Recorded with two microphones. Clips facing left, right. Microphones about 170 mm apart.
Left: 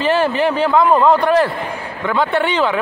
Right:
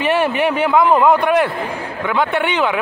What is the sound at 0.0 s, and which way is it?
A man's voice, 15° right (ahead or behind).